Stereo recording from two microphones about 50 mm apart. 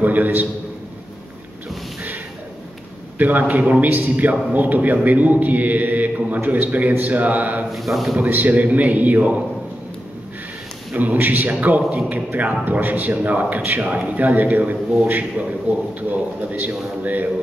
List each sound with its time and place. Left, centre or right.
0.0 s a man's voice: right
3.2 s a man's voice: right
7.7 s a man's voice: centre
8.2 s a man's voice: right
10.9 s a man's voice: right